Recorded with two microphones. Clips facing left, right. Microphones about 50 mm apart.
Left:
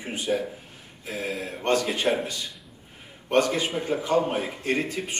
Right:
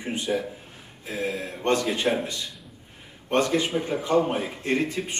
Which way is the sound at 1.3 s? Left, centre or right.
Left.